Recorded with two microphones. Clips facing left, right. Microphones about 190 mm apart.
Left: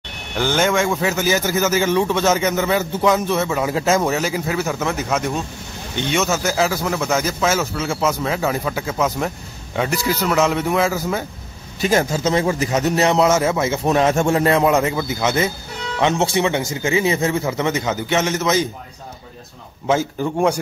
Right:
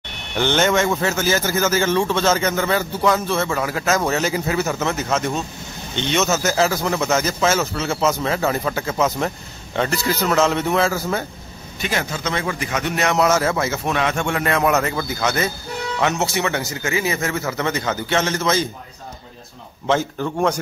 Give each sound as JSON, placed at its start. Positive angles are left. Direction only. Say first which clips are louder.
{"t": 0.4, "sound": "speech", "louder": "even", "side_deg": 5}
{"t": 3.3, "sound": "speech", "louder": "left 1 dB", "side_deg": 5}
{"t": 3.6, "sound": "speech", "louder": "left 3 dB", "side_deg": 20}
{"t": 4.8, "sound": "speech", "louder": "even", "side_deg": 10}
{"t": 11.8, "sound": "speech", "louder": "left 7 dB", "side_deg": 35}
{"t": 13.8, "sound": "speech", "louder": "left 8 dB", "side_deg": 35}
{"t": 14.8, "sound": "speech", "louder": "left 2 dB", "side_deg": 20}
{"t": 17.4, "sound": "speech", "louder": "left 2 dB", "side_deg": 15}
{"t": 19.9, "sound": "speech", "louder": "left 1 dB", "side_deg": 10}